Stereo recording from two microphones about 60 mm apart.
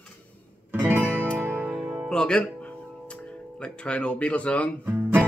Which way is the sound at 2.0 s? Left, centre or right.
Centre.